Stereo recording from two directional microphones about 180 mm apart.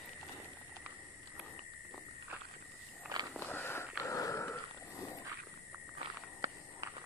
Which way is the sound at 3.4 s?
10° left (ahead or behind).